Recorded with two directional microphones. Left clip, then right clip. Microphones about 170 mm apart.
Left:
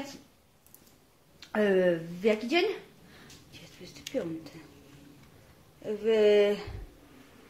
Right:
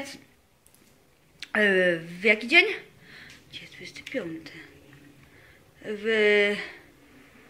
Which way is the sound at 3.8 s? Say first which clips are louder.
Right 1 dB; 5° left (ahead or behind).